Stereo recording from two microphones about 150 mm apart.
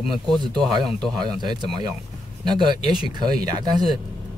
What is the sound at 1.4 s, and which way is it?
Speech, 30° right (ahead or behind).